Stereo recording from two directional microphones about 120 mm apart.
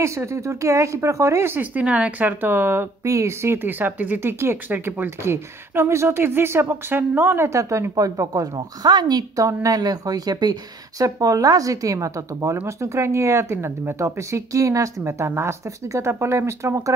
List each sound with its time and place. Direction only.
0.0 s speech: 25° right (ahead or behind)